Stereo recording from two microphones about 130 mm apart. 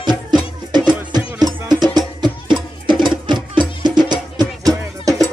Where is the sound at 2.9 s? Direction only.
35° right (ahead or behind).